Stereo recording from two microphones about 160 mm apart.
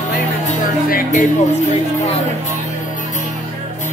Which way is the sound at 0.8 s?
65° left (ahead or behind).